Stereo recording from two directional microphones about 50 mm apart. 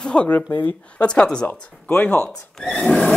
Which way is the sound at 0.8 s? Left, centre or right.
Left.